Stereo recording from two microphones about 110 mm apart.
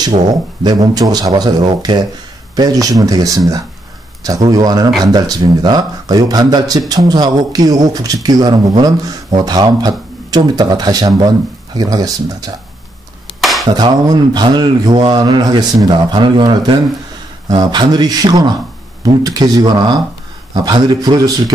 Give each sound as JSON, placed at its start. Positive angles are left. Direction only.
{"t": 0.0, "sound": "speech", "side_deg": -40}
{"t": 13.4, "sound": "dishes", "side_deg": 0}
{"t": 13.7, "sound": "speech", "side_deg": -40}